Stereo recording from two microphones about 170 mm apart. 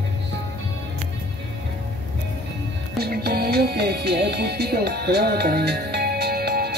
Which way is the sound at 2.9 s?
70° right (ahead or behind).